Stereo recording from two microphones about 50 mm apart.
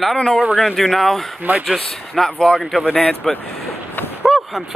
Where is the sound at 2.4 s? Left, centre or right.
Centre.